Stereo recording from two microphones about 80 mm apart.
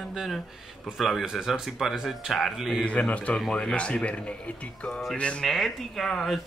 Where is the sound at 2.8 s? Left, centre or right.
Centre.